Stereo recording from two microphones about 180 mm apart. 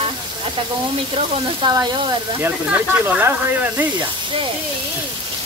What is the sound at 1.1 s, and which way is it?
Speech, 25° right (ahead or behind).